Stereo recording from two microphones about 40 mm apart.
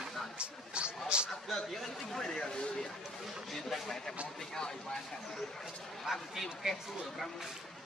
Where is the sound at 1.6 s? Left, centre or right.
Centre.